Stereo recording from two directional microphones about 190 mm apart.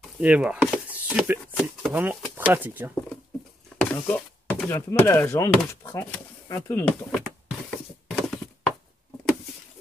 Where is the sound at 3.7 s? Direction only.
5° left (ahead or behind).